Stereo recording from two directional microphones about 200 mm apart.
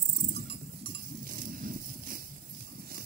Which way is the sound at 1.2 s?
45° right (ahead or behind).